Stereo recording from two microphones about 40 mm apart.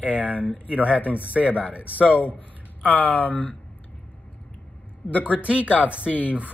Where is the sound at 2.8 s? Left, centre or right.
Left.